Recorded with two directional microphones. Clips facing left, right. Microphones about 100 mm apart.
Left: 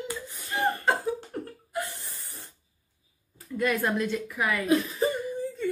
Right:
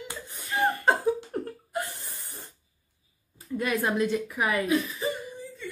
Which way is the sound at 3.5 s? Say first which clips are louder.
Left 1 dB; 15° right (ahead or behind).